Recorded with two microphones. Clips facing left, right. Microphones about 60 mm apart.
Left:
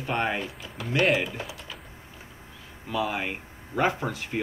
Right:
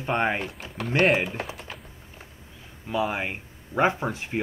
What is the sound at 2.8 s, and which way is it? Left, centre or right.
Speech, right.